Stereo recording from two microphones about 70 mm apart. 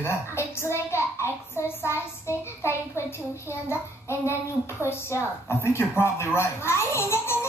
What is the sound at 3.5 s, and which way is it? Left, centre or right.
A woman's voice, left.